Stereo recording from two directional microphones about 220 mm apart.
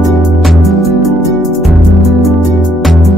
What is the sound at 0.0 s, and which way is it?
Music, centre (ahead or behind).